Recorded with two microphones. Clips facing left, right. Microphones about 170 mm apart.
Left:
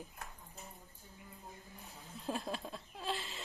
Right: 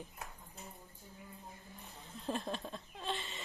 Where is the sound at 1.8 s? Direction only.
Centre (ahead or behind).